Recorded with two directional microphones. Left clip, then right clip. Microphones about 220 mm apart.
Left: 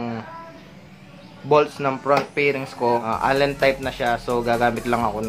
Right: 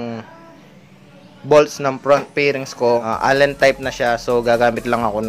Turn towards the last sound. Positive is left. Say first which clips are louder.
# right 4 dB
turn(degrees=-30)  # may be behind; listen again after turning